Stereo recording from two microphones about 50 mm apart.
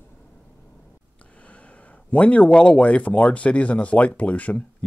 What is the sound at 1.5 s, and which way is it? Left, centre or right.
Speech, left.